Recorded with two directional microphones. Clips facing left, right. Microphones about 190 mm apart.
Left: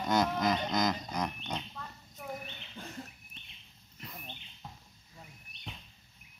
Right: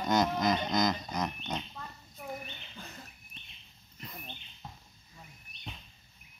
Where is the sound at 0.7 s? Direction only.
10° left (ahead or behind).